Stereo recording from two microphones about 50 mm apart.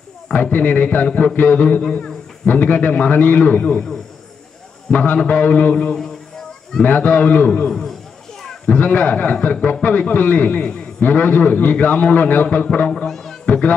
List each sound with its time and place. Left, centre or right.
0.3 s a man's voice: left
1.8 s a man's voice: left
4.9 s a man's voice: left
12.9 s speech: centre
13.5 s speech: left